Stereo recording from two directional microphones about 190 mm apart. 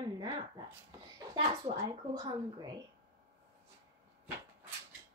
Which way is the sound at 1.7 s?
20° right (ahead or behind).